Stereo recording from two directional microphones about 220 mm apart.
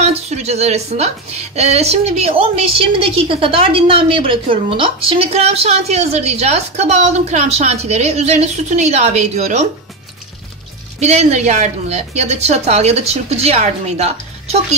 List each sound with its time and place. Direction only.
0.0 s a woman's voice: 30° right (ahead or behind)
11.0 s a woman's voice: 30° right (ahead or behind)